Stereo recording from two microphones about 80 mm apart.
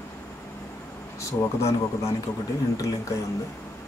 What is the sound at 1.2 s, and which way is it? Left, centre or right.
Speech, left.